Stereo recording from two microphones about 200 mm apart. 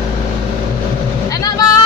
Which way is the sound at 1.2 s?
20° left (ahead or behind).